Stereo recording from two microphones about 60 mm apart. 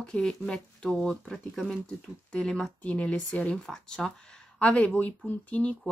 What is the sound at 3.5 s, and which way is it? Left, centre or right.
Speech, centre.